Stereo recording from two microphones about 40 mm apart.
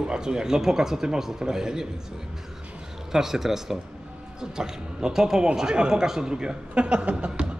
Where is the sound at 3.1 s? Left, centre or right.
Centre.